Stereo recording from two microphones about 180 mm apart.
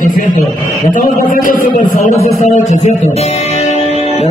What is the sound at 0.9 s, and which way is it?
A man's voice, 50° left (ahead or behind).